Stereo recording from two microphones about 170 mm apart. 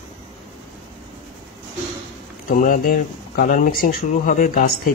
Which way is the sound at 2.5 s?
55° left (ahead or behind).